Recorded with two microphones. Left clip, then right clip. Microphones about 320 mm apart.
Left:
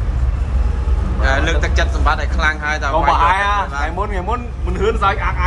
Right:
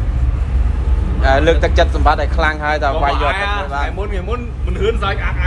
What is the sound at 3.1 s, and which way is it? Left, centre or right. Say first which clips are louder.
A man's voice: left 4 dB; left.